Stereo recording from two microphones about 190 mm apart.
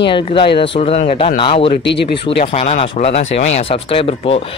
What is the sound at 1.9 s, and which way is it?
Speech, 65° left (ahead or behind).